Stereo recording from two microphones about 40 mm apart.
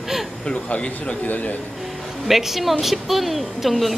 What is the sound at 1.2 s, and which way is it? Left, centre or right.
Speech, left.